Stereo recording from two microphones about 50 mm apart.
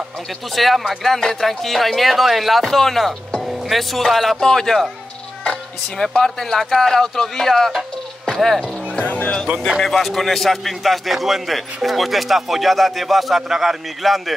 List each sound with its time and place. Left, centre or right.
0.6 s a man's voice: centre
5.9 s speech: centre
8.3 s music: centre
8.9 s speech: left
9.7 s a man's voice: centre